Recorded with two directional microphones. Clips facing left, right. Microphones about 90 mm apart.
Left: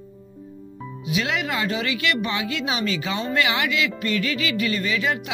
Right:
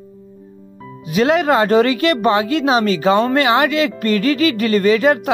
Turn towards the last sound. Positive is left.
turn(degrees=-45)  # may be behind; listen again after turning